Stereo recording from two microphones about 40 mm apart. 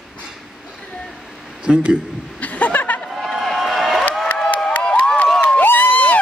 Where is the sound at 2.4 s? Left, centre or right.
Left.